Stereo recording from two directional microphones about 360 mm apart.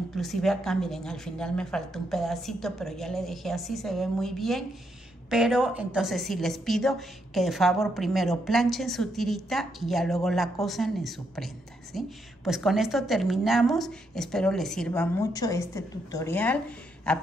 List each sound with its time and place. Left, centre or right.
0.1 s a woman's voice: centre